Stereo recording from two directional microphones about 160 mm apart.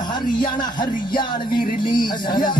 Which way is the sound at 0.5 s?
30° left (ahead or behind).